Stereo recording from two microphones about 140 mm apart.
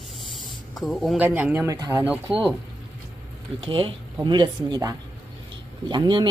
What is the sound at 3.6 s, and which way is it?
Speech, 40° right (ahead or behind).